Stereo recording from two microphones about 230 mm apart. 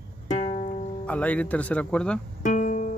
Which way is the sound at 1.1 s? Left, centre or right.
Centre.